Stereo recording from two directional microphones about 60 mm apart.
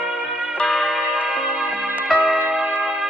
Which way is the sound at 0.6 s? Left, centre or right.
Centre.